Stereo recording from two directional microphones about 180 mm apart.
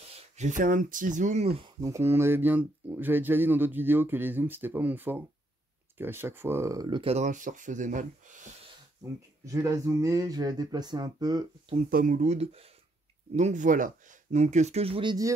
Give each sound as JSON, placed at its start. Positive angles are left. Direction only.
{"t": 0.4, "sound": "speech", "side_deg": -45}
{"t": 1.8, "sound": "speech", "side_deg": -15}
{"t": 9.4, "sound": "speech", "side_deg": -20}
{"t": 11.9, "sound": "speech", "side_deg": -50}